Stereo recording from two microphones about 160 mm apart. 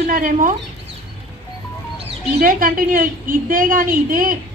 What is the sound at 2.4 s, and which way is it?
A woman's voice, 65° right (ahead or behind).